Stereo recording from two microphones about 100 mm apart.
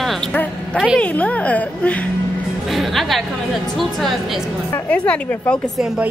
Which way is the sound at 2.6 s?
Centre (ahead or behind).